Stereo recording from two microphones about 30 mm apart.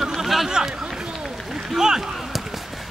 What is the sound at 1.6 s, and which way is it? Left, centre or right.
Speech, centre.